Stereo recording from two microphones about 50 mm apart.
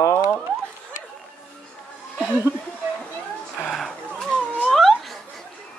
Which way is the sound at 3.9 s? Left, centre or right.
Centre.